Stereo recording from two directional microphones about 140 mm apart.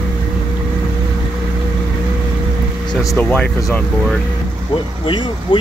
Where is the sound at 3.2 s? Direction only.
10° left (ahead or behind).